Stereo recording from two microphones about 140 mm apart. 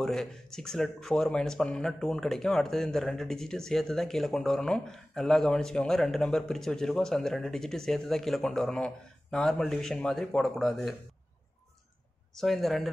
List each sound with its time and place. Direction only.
0.0 s speech: 5° left (ahead or behind)
12.4 s speech: centre (ahead or behind)